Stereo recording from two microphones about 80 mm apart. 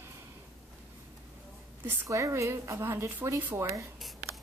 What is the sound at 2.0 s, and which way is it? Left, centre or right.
A woman's voice, right.